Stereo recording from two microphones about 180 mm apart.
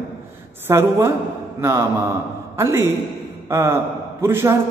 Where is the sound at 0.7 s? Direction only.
15° right (ahead or behind).